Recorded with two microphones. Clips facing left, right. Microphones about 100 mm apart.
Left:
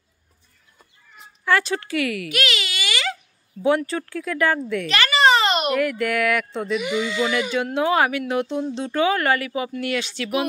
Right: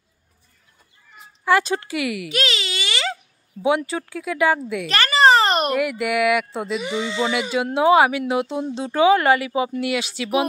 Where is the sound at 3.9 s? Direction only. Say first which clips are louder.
Even; 10° right (ahead or behind).